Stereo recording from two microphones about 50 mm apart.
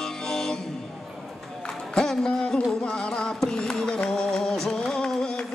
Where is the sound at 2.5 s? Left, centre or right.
Left.